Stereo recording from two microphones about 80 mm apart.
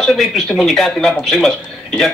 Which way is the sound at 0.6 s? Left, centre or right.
Centre.